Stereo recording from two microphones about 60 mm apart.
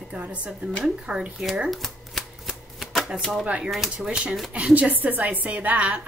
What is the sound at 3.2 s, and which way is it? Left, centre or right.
Speech, centre.